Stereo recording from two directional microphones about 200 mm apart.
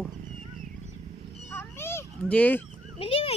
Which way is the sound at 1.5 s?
10° left (ahead or behind).